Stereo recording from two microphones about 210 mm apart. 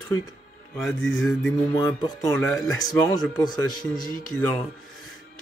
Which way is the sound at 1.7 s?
15° left (ahead or behind).